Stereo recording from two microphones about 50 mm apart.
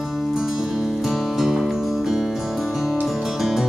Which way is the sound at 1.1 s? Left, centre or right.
Centre.